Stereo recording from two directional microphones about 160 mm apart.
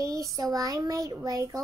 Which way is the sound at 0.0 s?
20° right (ahead or behind).